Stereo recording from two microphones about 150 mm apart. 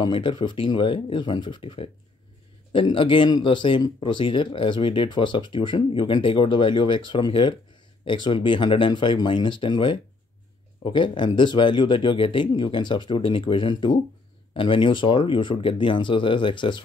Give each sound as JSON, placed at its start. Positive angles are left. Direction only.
{"t": 0.0, "sound": "speech", "side_deg": 30}